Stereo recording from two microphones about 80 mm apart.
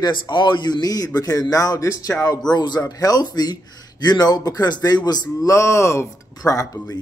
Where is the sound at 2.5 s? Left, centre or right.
Left.